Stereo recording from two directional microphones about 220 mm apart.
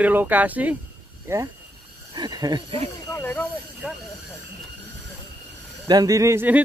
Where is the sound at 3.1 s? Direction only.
10° left (ahead or behind).